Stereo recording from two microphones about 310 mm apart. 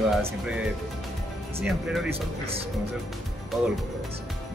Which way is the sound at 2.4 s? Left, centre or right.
Centre.